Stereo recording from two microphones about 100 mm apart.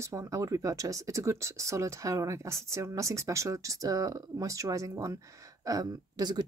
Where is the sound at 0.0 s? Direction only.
30° right (ahead or behind).